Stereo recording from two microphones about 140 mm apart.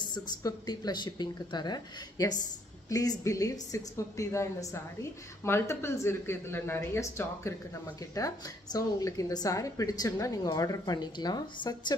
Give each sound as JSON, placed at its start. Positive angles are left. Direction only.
{"t": 0.0, "sound": "a woman's voice", "side_deg": 30}
{"t": 8.7, "sound": "a woman's voice", "side_deg": 25}